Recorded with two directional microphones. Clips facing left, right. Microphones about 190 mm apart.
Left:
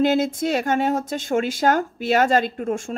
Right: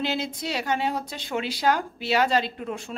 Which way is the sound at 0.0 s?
50° left (ahead or behind).